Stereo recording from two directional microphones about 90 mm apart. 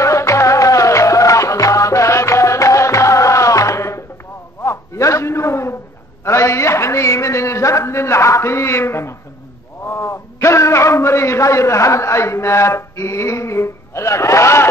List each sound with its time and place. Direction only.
0.0 s music: 35° left (ahead or behind)
4.6 s a sound: 35° left (ahead or behind)
9.8 s a man's voice: 30° left (ahead or behind)